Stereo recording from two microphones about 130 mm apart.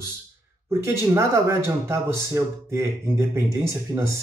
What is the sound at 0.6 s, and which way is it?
Speech, 20° right (ahead or behind).